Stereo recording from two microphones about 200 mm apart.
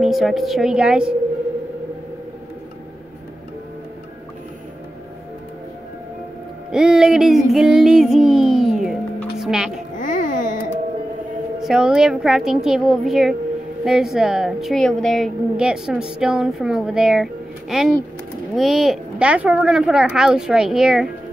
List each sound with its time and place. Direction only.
0.0 s a woman's voice: centre (ahead or behind)
6.7 s speech: 5° right (ahead or behind)
7.5 s music: 5° right (ahead or behind)
9.4 s speech: centre (ahead or behind)
9.9 s music: 40° left (ahead or behind)
11.6 s a woman's voice: 5° right (ahead or behind)